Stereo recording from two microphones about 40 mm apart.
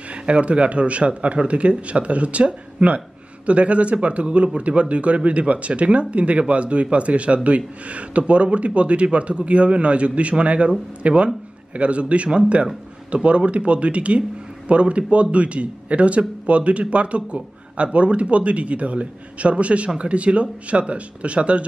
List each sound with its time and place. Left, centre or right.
0.1 s speech: right